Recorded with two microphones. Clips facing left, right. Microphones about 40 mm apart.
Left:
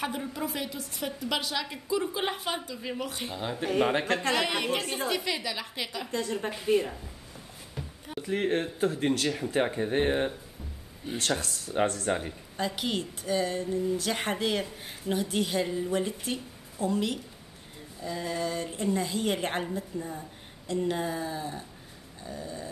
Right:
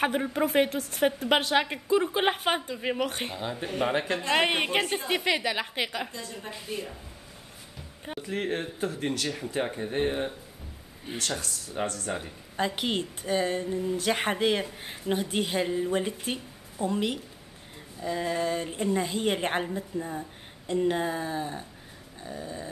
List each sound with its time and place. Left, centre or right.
0.0 s a woman's voice: right
3.3 s speech: centre
4.3 s a woman's voice: right
6.1 s a woman's voice: left
6.7 s speech: left
8.2 s speech: centre
9.6 s speech: centre
11.1 s speech: left
11.4 s speech: left
12.5 s speech: right